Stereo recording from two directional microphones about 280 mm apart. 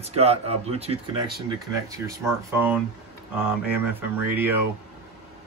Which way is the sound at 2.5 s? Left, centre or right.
Centre.